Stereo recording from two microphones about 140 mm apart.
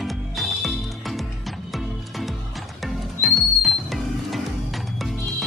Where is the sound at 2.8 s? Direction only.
Centre (ahead or behind).